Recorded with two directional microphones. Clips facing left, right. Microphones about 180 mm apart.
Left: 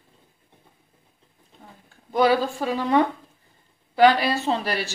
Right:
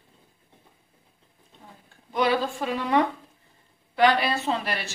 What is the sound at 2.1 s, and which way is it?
A woman's voice, 35° left (ahead or behind).